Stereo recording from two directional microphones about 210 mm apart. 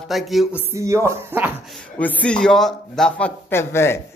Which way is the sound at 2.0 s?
5° left (ahead or behind).